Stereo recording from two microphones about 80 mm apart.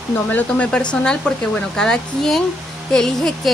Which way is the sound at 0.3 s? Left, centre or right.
Left.